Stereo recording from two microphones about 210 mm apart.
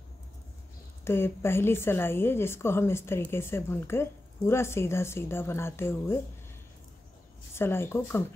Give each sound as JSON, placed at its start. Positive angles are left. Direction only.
{"t": 1.0, "sound": "a woman's voice", "side_deg": 10}
{"t": 7.5, "sound": "a woman's voice", "side_deg": 10}